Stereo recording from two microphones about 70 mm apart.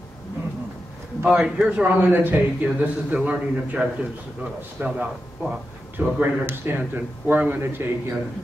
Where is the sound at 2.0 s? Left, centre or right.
Right.